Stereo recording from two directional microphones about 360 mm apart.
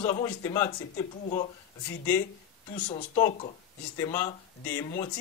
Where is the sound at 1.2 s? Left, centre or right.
Centre.